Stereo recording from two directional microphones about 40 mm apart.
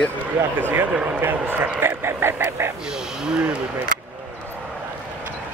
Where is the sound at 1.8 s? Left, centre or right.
Right.